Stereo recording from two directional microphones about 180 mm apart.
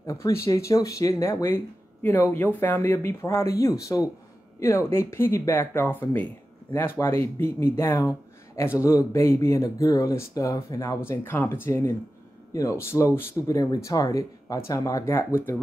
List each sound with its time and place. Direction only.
0.0 s speech: 15° left (ahead or behind)